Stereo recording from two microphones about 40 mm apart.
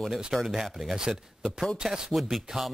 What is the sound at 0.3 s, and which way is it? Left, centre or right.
Speech, centre.